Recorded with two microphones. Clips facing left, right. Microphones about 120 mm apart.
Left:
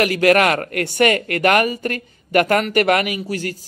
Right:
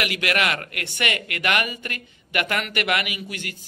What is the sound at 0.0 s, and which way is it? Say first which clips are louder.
Speech: left 10 dB; 40° left (ahead or behind).